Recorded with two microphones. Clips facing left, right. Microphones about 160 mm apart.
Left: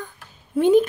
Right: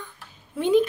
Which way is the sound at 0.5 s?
45° left (ahead or behind).